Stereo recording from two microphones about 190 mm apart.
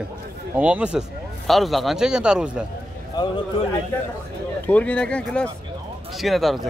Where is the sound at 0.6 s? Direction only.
5° right (ahead or behind).